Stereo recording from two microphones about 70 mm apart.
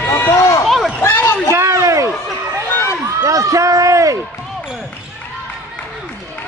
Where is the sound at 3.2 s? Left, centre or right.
Right.